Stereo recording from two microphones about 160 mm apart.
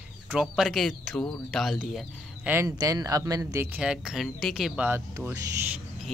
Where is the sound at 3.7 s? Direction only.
5° right (ahead or behind).